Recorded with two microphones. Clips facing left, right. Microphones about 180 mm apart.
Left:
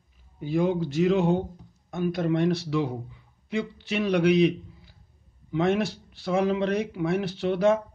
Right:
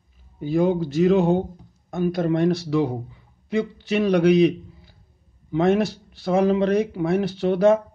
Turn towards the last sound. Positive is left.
turn(degrees=-40)  # may be behind; listen again after turning